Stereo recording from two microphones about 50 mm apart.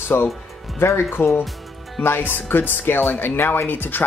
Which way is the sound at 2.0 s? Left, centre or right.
Left.